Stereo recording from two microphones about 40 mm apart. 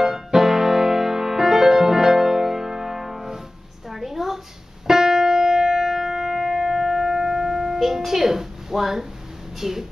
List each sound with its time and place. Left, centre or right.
0.0 s music: centre
3.9 s a sound: centre
4.8 s keyboard: centre
9.6 s speech: centre